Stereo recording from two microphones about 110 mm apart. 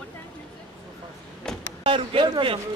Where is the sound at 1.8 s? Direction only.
50° right (ahead or behind).